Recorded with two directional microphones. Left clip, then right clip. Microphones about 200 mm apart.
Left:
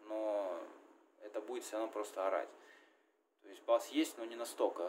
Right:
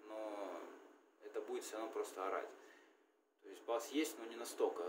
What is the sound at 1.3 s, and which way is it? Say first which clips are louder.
Speech: left 3 dB; 35° left (ahead or behind).